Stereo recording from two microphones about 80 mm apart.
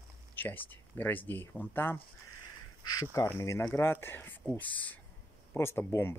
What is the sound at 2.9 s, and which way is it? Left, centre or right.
Speech, left.